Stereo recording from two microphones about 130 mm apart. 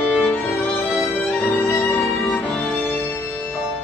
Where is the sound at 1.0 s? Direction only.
15° left (ahead or behind).